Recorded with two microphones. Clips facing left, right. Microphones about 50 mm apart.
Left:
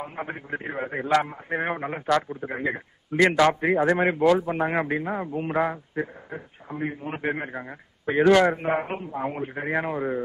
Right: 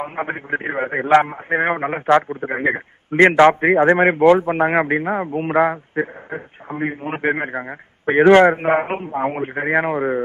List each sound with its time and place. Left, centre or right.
0.0 s a man's voice: right